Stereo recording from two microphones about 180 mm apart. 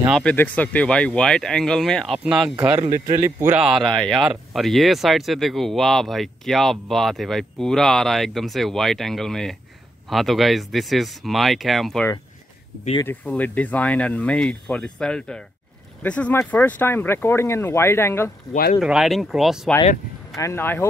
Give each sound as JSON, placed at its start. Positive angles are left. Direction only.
{"t": 0.2, "sound": "speech", "side_deg": 10}
{"t": 3.1, "sound": "speech", "side_deg": -15}
{"t": 18.5, "sound": "speech", "side_deg": 50}
{"t": 18.8, "sound": "speech", "side_deg": 0}
{"t": 20.3, "sound": "speech", "side_deg": 15}